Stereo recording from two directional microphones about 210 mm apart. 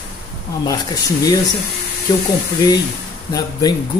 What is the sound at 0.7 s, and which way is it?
Speech, 20° left (ahead or behind).